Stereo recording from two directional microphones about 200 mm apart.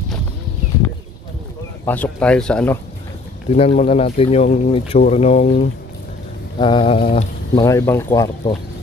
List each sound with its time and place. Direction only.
1.9 s speech: 10° left (ahead or behind)
3.4 s speech: 30° left (ahead or behind)
6.6 s mantra: 25° left (ahead or behind)
7.6 s speech: 15° left (ahead or behind)
8.1 s mantra: 25° left (ahead or behind)